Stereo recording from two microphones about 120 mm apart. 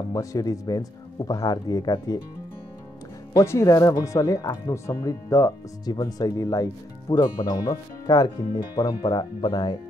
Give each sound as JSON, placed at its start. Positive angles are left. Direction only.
{"t": 0.1, "sound": "speech", "side_deg": 30}
{"t": 3.3, "sound": "speech", "side_deg": 25}